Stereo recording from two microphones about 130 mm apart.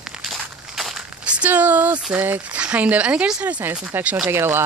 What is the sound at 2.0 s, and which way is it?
Speech, 15° right (ahead or behind).